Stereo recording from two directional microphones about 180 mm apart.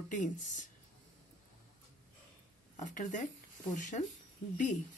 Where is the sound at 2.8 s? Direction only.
45° left (ahead or behind).